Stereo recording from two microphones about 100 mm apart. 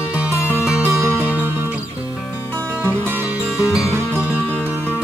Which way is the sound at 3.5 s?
5° right (ahead or behind).